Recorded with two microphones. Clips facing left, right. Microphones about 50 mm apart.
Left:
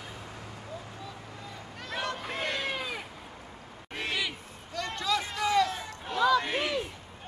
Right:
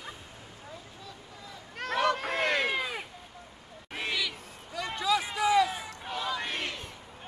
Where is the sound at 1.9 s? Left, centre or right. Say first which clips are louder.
Right 6 dB; right.